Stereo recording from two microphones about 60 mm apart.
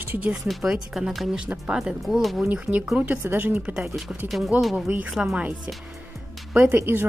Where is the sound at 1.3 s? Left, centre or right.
Centre.